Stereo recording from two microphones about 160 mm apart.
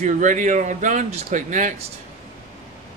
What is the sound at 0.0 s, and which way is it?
Speech, 50° right (ahead or behind).